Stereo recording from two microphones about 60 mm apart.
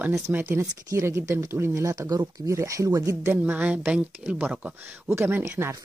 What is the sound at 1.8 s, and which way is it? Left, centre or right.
Speech, right.